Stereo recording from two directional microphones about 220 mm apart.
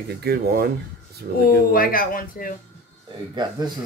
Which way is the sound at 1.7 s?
40° left (ahead or behind).